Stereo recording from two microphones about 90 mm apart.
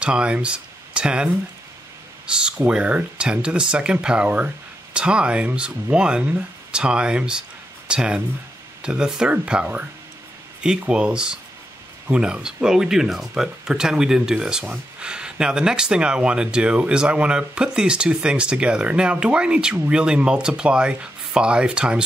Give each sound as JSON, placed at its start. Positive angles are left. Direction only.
{"t": 0.0, "sound": "speech", "side_deg": -10}